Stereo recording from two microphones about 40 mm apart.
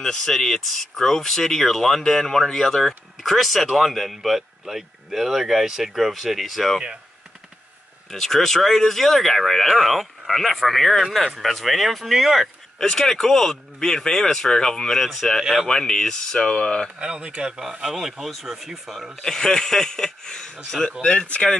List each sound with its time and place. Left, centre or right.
0.0 s speech: centre
8.1 s speech: centre
12.7 s speech: centre
17.0 s speech: right
17.8 s speech: centre
19.2 s speech: centre
21.3 s speech: left